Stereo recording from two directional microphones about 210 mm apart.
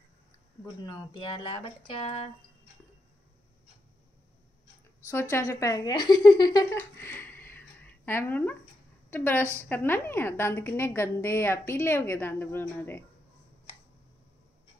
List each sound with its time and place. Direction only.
0.8 s speech: 20° left (ahead or behind)
5.3 s a woman's voice: 15° left (ahead or behind)